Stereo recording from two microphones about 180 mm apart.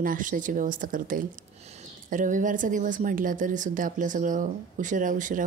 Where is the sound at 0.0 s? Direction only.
50° right (ahead or behind).